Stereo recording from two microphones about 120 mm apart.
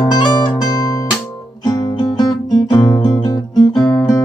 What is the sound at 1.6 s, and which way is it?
Guitar, 35° left (ahead or behind).